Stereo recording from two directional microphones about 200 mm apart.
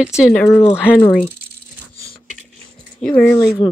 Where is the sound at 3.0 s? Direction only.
5° left (ahead or behind).